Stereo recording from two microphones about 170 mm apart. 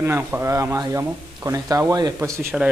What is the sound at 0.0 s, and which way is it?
A man's voice, 15° right (ahead or behind).